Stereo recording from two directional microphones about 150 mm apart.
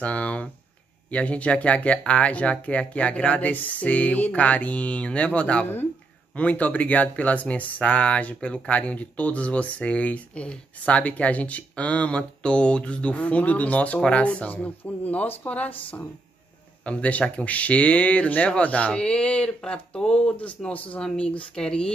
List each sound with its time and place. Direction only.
0.0 s speech: 10° left (ahead or behind)